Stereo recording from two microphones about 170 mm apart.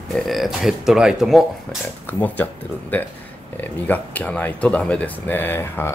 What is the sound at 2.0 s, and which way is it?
Speech, 10° left (ahead or behind).